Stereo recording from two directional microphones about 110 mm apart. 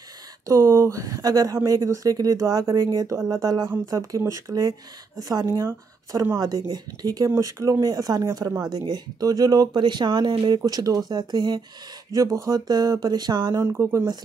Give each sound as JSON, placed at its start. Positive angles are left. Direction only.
{"t": 0.5, "sound": "speech", "side_deg": -25}
{"t": 12.1, "sound": "speech", "side_deg": -30}
{"t": 13.6, "sound": "speech", "side_deg": -25}